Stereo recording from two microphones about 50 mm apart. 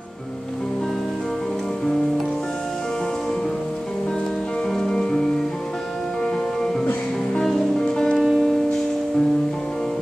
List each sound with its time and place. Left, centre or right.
4.7 s music: centre
7.3 s music: centre
7.8 s music: centre
8.2 s music: centre